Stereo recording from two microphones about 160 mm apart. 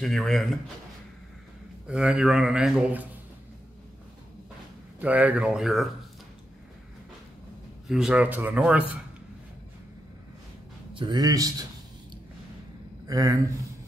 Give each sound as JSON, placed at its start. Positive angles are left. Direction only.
{"t": 0.0, "sound": "a man's voice", "side_deg": 0}
{"t": 1.9, "sound": "a man's voice", "side_deg": -5}
{"t": 5.0, "sound": "speech", "side_deg": -10}
{"t": 7.9, "sound": "speech", "side_deg": -5}
{"t": 10.9, "sound": "speech", "side_deg": -30}
{"t": 13.0, "sound": "speech", "side_deg": -20}